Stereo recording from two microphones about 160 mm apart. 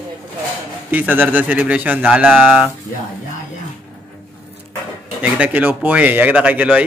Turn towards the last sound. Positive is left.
turn(degrees=-10)  # may be behind; listen again after turning